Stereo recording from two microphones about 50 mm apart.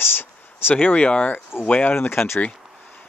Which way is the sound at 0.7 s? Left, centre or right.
Left.